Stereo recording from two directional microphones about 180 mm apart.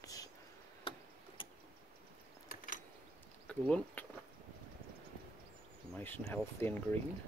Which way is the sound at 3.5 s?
5° left (ahead or behind).